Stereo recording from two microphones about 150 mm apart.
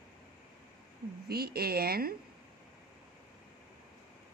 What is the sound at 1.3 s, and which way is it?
Speech, 90° right.